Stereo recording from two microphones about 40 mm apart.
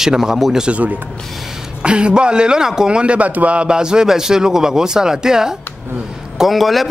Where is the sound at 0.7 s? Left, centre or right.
Right.